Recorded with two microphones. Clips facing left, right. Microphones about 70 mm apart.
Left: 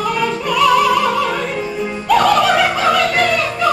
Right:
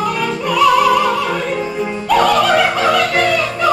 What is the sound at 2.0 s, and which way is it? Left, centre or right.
Opera, centre.